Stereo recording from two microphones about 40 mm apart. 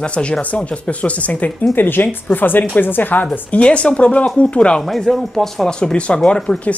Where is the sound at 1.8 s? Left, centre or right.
Left.